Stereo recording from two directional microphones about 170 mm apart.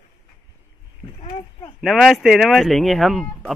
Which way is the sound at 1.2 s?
35° left (ahead or behind).